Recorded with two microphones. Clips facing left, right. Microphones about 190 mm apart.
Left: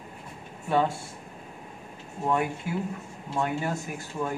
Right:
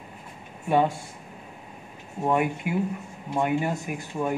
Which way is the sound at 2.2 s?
15° right (ahead or behind).